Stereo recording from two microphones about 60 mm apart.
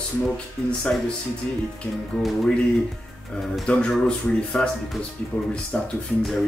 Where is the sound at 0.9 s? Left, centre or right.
Left.